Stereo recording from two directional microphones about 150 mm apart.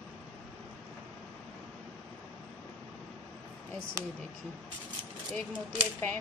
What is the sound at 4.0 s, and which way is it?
Speech, 20° right (ahead or behind).